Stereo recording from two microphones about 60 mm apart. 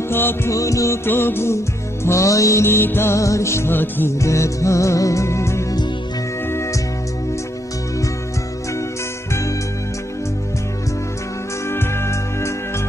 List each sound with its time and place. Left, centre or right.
0.1 s music: left
0.5 s music: left
1.0 s music: left
2.0 s music: left
2.6 s music: left
3.2 s music: left
3.7 s music: left
4.2 s music: left
11.7 s music: left